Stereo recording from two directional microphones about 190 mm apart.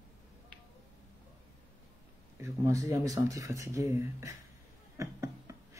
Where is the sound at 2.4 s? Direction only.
15° right (ahead or behind).